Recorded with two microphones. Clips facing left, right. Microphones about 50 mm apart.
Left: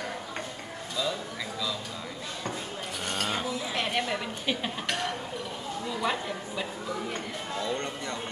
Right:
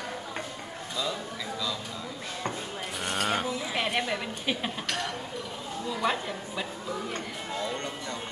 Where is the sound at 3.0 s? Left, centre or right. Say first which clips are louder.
Right 3 dB; centre.